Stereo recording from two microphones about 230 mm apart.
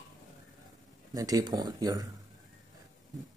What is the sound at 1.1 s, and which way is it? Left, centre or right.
Speech, centre.